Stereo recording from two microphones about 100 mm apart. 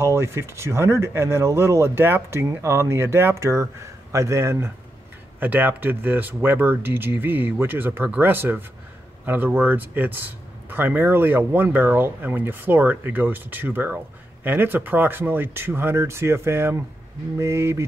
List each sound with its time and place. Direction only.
0.0 s speech: 25° right (ahead or behind)